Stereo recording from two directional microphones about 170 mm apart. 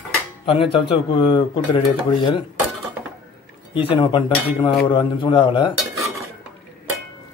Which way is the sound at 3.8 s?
30° left (ahead or behind).